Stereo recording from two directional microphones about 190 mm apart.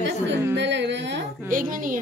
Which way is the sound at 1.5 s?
45° right (ahead or behind).